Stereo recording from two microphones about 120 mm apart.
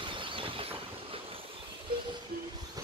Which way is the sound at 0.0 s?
45° right (ahead or behind).